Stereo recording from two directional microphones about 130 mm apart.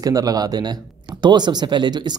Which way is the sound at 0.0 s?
30° right (ahead or behind).